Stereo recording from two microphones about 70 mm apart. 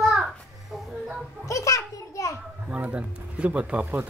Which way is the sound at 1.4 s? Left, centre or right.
Left.